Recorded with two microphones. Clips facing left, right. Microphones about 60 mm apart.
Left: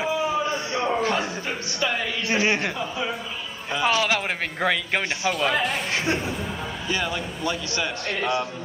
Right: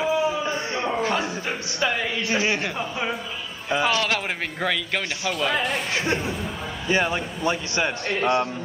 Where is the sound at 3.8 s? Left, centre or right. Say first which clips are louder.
Left 4 dB; centre.